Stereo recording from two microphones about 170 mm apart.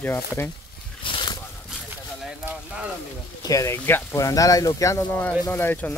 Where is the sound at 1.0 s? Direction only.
30° left (ahead or behind).